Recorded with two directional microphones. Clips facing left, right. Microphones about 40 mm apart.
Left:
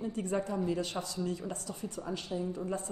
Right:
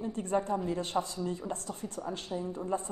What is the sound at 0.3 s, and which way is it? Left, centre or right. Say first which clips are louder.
A woman's voice: right 3 dB; right.